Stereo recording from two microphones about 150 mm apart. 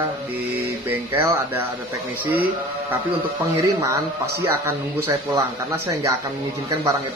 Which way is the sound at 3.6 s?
20° right (ahead or behind).